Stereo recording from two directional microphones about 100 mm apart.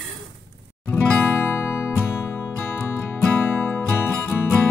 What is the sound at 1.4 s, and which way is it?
Music, 20° left (ahead or behind).